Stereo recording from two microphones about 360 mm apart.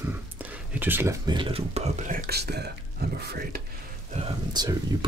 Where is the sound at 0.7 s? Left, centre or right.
Centre.